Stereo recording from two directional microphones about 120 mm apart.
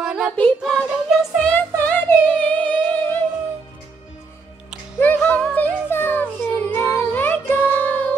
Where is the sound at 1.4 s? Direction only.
15° left (ahead or behind).